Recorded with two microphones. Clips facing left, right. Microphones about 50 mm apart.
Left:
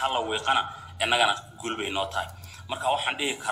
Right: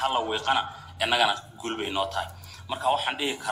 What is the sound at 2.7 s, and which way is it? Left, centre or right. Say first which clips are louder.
Speech: right 1 dB; left.